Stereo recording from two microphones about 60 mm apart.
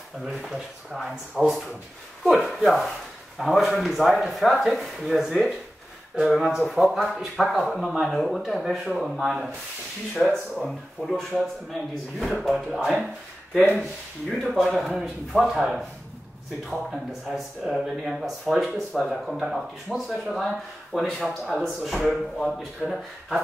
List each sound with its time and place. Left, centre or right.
0.3 s speech: centre